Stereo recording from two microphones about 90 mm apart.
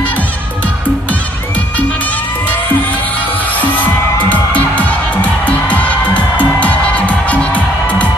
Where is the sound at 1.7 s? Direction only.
15° left (ahead or behind).